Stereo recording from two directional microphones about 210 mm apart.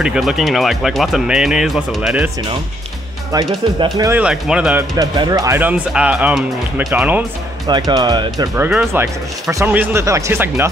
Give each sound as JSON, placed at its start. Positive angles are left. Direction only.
{"t": 0.0, "sound": "speech", "side_deg": -5}
{"t": 3.8, "sound": "speech", "side_deg": -15}
{"t": 4.2, "sound": "speech", "side_deg": -5}
{"t": 4.9, "sound": "speech", "side_deg": -20}
{"t": 7.6, "sound": "speech", "side_deg": -20}